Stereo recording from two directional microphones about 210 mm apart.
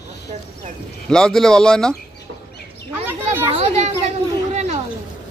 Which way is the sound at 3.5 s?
30° right (ahead or behind).